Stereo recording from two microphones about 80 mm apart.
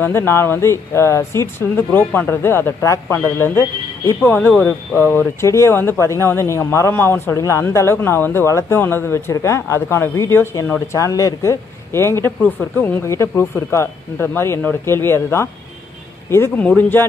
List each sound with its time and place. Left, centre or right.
0.0 s speech: left
12.4 s speech: left
13.0 s speech: left
16.5 s speech: centre